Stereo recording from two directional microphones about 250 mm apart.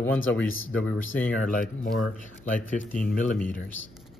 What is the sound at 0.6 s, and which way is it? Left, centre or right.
Speech, left.